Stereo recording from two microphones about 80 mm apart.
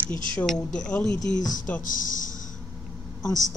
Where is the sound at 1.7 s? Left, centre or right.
Left.